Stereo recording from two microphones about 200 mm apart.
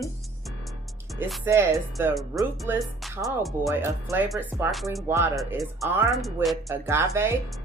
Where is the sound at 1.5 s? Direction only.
15° right (ahead or behind).